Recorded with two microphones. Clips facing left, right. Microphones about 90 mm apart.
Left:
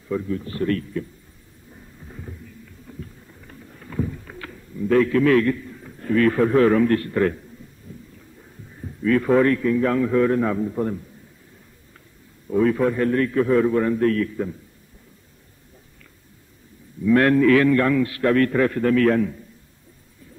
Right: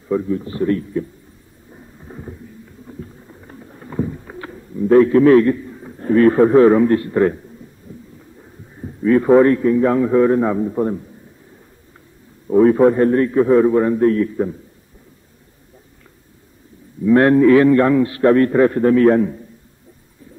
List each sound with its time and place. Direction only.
0.1 s a man's voice: 25° right (ahead or behind)
1.7 s thunder: 30° right (ahead or behind)
2.9 s a sound: 25° right (ahead or behind)
8.8 s a man's voice: 25° right (ahead or behind)
12.4 s a man's voice: 30° right (ahead or behind)
17.0 s a man's voice: 25° right (ahead or behind)